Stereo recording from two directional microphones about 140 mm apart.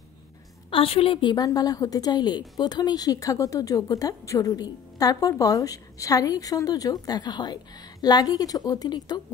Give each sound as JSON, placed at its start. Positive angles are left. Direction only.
{"t": 0.7, "sound": "a woman's voice", "side_deg": 40}